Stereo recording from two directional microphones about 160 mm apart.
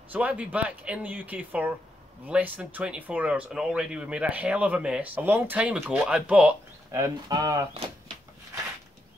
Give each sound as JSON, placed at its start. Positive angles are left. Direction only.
{"t": 0.1, "sound": "speech", "side_deg": -10}